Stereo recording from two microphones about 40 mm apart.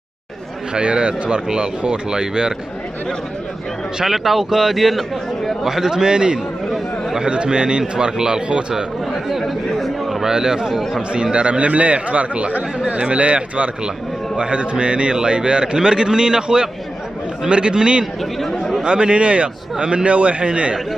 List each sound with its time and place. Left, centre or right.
0.7 s a man's voice: right
4.0 s a man's voice: centre; by 8.8 s right
10.2 s a man's voice: centre
10.7 s speech: centre
11.3 s a man's voice: right